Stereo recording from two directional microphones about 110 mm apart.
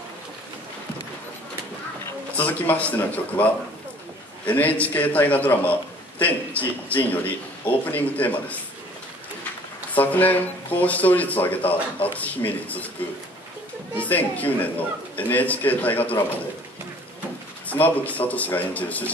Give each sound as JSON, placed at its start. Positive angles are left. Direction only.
{"t": 2.3, "sound": "a man's voice", "side_deg": 15}
{"t": 4.5, "sound": "a man's voice", "side_deg": 15}
{"t": 9.9, "sound": "a man's voice", "side_deg": 15}
{"t": 14.0, "sound": "a man's voice", "side_deg": 15}
{"t": 17.6, "sound": "a man's voice", "side_deg": 15}